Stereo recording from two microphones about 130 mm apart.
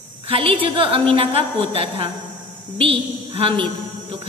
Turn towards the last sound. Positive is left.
turn(degrees=-50)  # may be behind; listen again after turning